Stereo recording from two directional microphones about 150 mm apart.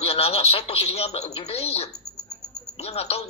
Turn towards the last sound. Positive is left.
turn(degrees=45)  # may be behind; listen again after turning